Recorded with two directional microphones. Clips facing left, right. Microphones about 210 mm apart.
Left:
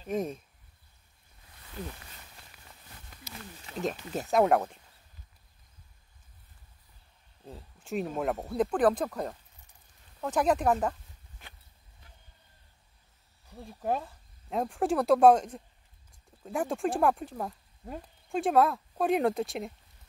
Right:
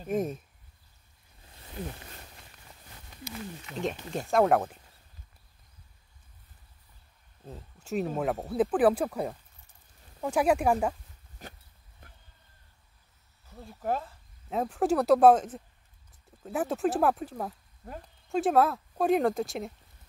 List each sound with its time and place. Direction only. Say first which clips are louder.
0.1 s speech: right 2 dB; 5° right (ahead or behind)
2.5 s a sound: even; 5° left (ahead or behind)
3.7 s speech: even; centre (ahead or behind)
7.4 s speech: right 2 dB; centre (ahead or behind)
11.4 s chicken: right 9 dB; 40° right (ahead or behind)
12.0 s a sound: right 4 dB; 55° right (ahead or behind)
13.5 s speech: even; 15° left (ahead or behind)
14.5 s speech: right 2 dB; centre (ahead or behind)